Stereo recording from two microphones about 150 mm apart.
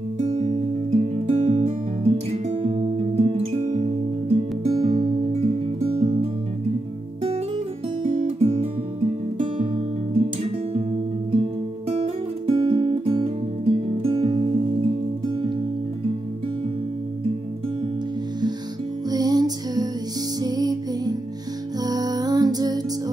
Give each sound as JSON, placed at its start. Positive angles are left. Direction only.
{"t": 0.2, "sound": "music", "side_deg": -45}
{"t": 8.0, "sound": "guitar", "side_deg": -40}
{"t": 12.0, "sound": "music", "side_deg": -40}
{"t": 19.0, "sound": "music", "side_deg": -25}